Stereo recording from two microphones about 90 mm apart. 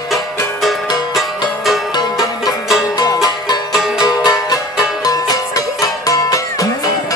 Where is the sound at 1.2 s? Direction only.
5° right (ahead or behind).